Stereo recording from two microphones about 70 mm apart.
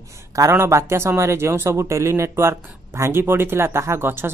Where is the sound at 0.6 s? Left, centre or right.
Right.